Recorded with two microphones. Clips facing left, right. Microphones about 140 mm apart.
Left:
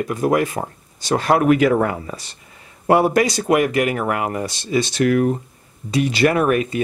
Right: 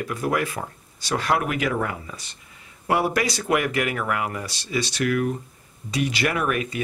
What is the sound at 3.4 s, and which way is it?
Speech, 35° left (ahead or behind).